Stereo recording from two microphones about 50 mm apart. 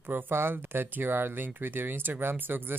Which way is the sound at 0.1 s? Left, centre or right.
Right.